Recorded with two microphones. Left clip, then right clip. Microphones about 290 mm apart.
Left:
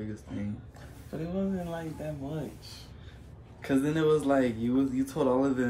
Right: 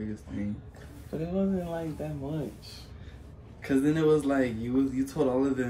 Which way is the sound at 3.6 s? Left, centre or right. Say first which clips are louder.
Right 1 dB; centre.